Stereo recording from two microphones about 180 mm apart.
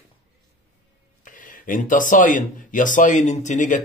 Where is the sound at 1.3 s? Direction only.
50° left (ahead or behind).